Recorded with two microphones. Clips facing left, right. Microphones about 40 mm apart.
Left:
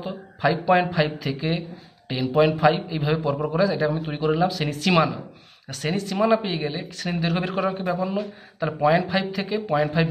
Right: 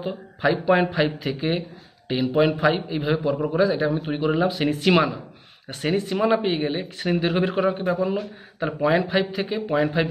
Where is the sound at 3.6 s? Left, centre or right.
Centre.